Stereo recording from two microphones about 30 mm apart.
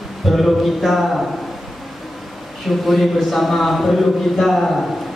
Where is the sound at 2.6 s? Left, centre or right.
Centre.